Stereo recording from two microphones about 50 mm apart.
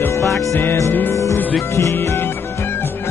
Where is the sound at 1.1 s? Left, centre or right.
Left.